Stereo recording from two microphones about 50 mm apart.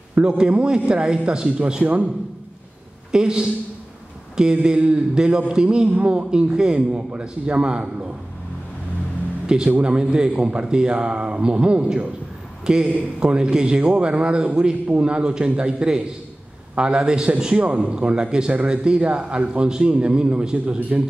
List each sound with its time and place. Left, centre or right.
0.2 s speech: right
3.1 s a man's voice: centre
5.9 s a man's voice: right
9.7 s a man's voice: right